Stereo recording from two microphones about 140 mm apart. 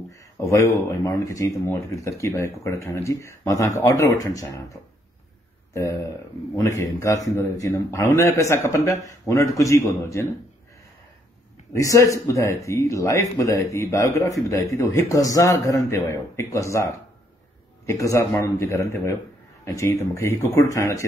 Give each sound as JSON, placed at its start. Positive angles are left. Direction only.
{"t": 0.1, "sound": "speech", "side_deg": 20}
{"t": 5.7, "sound": "speech", "side_deg": 20}
{"t": 11.7, "sound": "speech", "side_deg": 25}